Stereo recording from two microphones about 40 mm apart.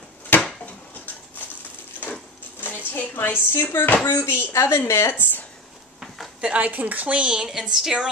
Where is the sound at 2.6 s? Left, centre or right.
Left.